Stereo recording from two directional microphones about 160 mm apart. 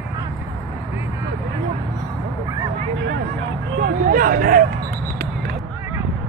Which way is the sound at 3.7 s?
75° right (ahead or behind).